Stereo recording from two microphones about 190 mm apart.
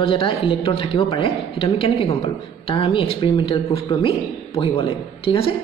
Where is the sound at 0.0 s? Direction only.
30° left (ahead or behind).